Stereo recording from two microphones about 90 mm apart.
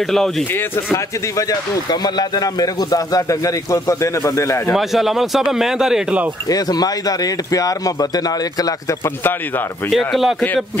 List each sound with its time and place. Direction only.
0.0 s speech: 5° left (ahead or behind)
0.9 s speech: 40° left (ahead or behind)
4.7 s speech: 5° right (ahead or behind)
6.5 s speech: 45° left (ahead or behind)
9.8 s speech: centre (ahead or behind)